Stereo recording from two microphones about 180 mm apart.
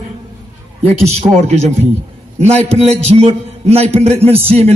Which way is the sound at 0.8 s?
40° right (ahead or behind).